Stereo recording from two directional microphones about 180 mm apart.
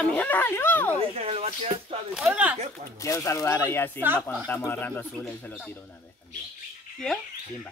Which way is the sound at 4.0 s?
10° right (ahead or behind).